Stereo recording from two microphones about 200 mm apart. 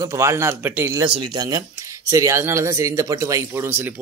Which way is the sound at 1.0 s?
25° right (ahead or behind).